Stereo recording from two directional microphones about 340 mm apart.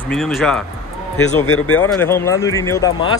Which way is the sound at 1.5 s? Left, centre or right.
Left.